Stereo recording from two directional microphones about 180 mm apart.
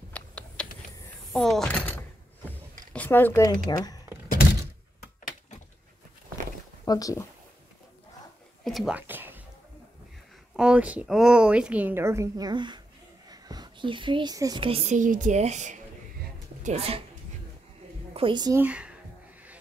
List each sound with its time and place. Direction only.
0.1 s typing: 5° left (ahead or behind)
1.3 s speech: centre (ahead or behind)
2.9 s a sound: 10° left (ahead or behind)
3.4 s speech: 20° left (ahead or behind)
6.8 s speech: 20° left (ahead or behind)
8.6 s speech: centre (ahead or behind)
10.5 s speech: 5° right (ahead or behind); by 17.0 s 35° right (ahead or behind)
18.1 s a woman's voice: 25° right (ahead or behind)
18.6 s speech: 5° right (ahead or behind)